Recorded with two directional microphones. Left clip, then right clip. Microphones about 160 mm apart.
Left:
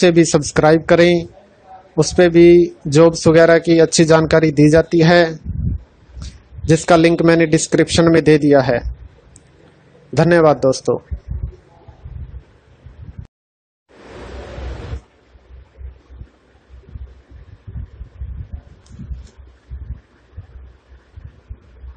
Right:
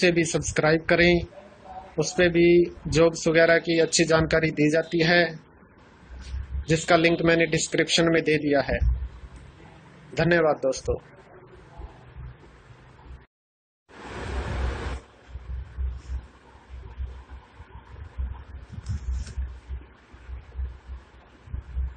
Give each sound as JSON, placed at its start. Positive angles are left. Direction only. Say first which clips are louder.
{"t": 0.0, "sound": "speech", "louder": "left 10 dB", "side_deg": 55}
{"t": 6.6, "sound": "speech", "louder": "left 9 dB", "side_deg": 60}
{"t": 10.1, "sound": "speech", "louder": "left 10 dB", "side_deg": 60}